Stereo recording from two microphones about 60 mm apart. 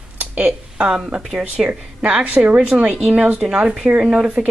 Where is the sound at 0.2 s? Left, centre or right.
Right.